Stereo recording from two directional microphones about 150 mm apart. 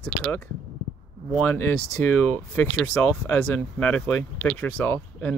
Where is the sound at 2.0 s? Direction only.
10° left (ahead or behind).